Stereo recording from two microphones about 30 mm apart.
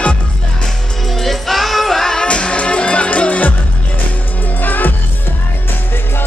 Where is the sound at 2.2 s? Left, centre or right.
Left.